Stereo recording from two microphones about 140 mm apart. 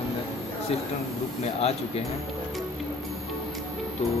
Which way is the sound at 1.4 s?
50° left (ahead or behind).